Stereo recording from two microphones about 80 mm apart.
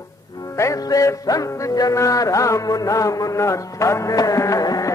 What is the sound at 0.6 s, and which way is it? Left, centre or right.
Music, left.